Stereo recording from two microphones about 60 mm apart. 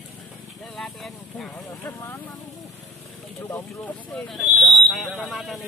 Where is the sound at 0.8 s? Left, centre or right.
Centre.